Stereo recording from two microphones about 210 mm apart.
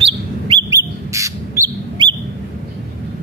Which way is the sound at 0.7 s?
15° right (ahead or behind).